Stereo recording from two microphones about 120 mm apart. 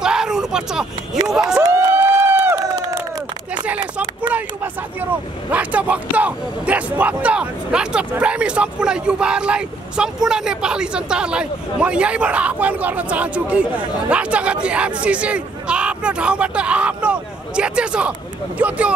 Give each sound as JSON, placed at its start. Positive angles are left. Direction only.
{"t": 0.0, "sound": "a sound", "side_deg": -5}
{"t": 1.6, "sound": "crowd", "side_deg": -20}
{"t": 5.5, "sound": "speech", "side_deg": -10}